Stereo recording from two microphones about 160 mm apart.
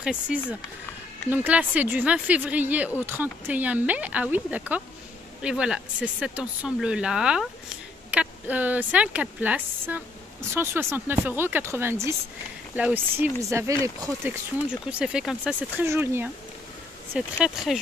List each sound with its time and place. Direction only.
0.0 s speech: 5° right (ahead or behind)
14.9 s speech: 5° right (ahead or behind)